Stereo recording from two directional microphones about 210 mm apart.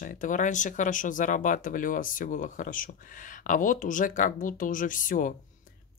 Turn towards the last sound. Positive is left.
turn(degrees=40)  # may be behind; listen again after turning